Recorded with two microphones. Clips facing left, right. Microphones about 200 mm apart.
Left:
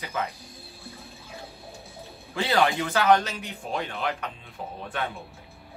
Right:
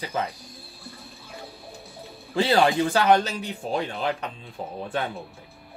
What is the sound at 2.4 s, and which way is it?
Speech, 30° right (ahead or behind).